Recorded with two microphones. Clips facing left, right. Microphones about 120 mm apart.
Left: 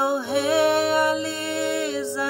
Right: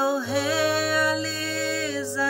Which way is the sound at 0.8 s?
20° left (ahead or behind).